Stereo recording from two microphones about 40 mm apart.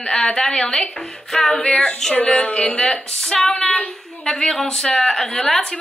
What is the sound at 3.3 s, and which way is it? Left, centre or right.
A woman's voice, centre.